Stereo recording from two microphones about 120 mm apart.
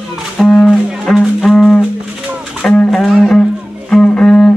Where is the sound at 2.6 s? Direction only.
5° left (ahead or behind).